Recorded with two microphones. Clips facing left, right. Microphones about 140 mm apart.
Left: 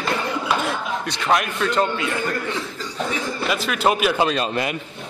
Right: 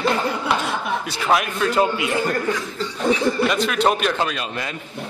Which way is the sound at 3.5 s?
5° left (ahead or behind).